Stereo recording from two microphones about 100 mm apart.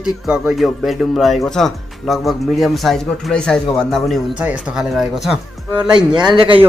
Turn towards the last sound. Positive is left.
turn(degrees=-60)  # may be behind; listen again after turning